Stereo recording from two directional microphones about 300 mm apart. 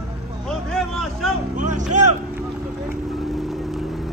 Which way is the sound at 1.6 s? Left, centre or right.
Right.